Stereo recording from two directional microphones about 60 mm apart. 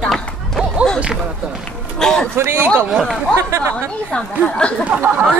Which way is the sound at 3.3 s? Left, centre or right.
Right.